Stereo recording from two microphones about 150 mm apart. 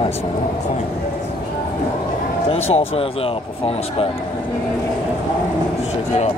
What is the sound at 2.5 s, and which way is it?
Speech, 40° left (ahead or behind).